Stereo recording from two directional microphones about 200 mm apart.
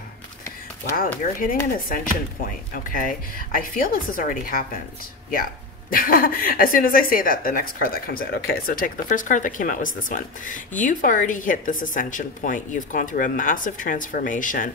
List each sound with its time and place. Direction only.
1.9 s a woman's voice: 45° left (ahead or behind)